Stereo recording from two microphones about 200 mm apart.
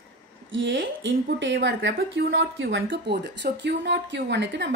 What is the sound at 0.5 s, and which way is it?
Speech, 65° right (ahead or behind).